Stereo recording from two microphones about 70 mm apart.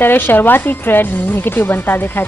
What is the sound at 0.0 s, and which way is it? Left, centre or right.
A woman's voice, left.